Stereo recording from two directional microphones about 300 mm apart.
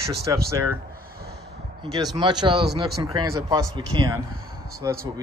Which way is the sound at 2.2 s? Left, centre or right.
Centre.